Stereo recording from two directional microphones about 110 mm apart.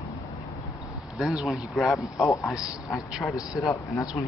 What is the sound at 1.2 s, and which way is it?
Speech, centre (ahead or behind).